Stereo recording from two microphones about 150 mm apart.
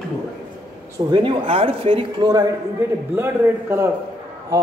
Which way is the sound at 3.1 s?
15° right (ahead or behind).